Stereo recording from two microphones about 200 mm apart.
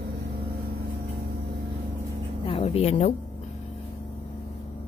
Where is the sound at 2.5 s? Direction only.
30° left (ahead or behind).